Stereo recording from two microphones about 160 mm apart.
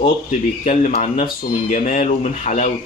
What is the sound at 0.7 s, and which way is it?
Speech, 50° left (ahead or behind).